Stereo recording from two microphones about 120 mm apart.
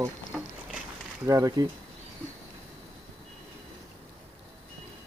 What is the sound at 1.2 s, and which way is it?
Speech, 30° right (ahead or behind).